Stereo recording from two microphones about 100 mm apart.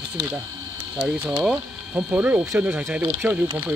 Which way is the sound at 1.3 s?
15° right (ahead or behind).